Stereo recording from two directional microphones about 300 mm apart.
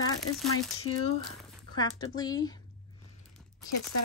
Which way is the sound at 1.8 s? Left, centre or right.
Centre.